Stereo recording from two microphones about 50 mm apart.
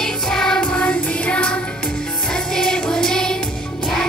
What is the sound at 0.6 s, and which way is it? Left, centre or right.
Music, left.